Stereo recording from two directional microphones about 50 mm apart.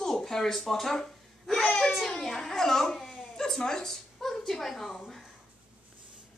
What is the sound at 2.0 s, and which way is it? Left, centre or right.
A child's voice, centre.